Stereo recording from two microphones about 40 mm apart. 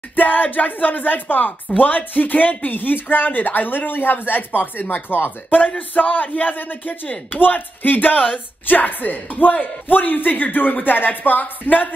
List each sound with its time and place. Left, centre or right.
0.1 s speech: left
5.8 s speech: left